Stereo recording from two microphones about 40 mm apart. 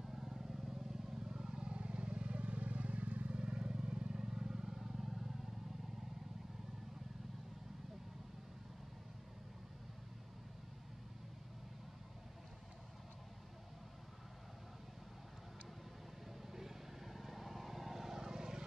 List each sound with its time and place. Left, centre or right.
0.0 s vehicle: centre
1.6 s vehicle: right
3.3 s vehicle: centre
16.4 s vehicle: centre